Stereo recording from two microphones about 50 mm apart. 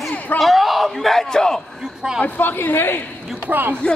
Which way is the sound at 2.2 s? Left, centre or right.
Left.